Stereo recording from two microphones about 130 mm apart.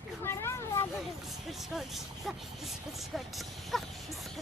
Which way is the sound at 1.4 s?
Centre (ahead or behind).